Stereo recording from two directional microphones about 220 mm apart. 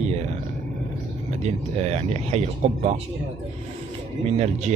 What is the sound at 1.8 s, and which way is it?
Speech, 30° right (ahead or behind).